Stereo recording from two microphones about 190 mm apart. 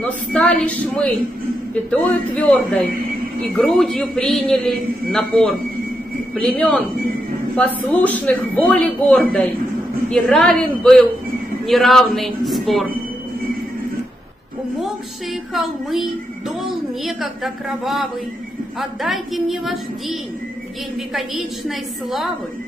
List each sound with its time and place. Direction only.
0.3 s a woman's voice: 5° left (ahead or behind)
15.5 s a woman's voice: centre (ahead or behind)